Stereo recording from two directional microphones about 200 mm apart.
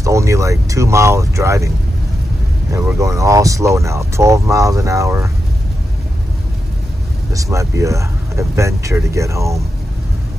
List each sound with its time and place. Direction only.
0.0 s speech: 15° right (ahead or behind)
2.7 s speech: 15° right (ahead or behind)
7.3 s speech: 15° right (ahead or behind)